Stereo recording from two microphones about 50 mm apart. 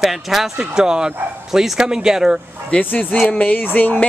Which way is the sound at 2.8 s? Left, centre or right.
Left.